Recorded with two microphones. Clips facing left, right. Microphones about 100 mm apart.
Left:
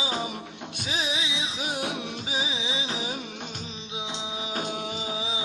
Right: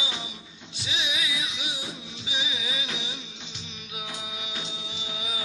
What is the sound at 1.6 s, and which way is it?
Music, 55° left (ahead or behind).